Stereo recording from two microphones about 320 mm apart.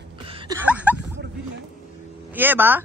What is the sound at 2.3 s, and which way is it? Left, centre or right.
Speech, centre.